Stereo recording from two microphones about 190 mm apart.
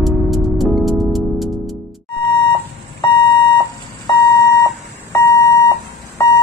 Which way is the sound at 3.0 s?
25° left (ahead or behind).